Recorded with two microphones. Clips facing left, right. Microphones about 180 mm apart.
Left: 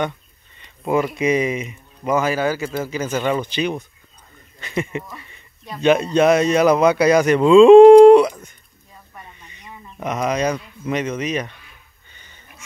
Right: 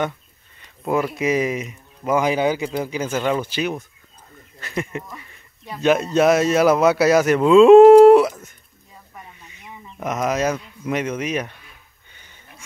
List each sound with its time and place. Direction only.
0.6 s speech: centre (ahead or behind)
2.1 s speech: 15° right (ahead or behind)
9.1 s a sound: 5° right (ahead or behind)